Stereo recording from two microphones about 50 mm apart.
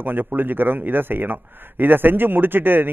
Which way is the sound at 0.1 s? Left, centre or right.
Right.